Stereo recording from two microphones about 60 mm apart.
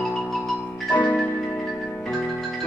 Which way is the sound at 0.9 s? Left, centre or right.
Left.